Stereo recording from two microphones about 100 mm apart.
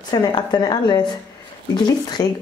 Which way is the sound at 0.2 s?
40° left (ahead or behind).